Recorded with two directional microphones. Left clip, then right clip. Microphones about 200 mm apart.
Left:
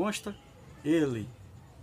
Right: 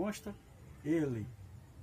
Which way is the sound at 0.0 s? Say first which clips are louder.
Left 7 dB; 10° left (ahead or behind).